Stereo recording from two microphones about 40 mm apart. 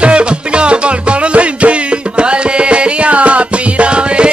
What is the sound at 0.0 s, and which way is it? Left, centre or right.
Music, right.